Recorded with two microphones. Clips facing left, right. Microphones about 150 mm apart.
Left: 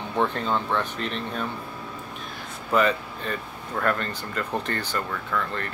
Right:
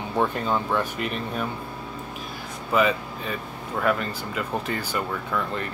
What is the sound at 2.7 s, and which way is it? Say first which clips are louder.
Speech: even; 5° right (ahead or behind).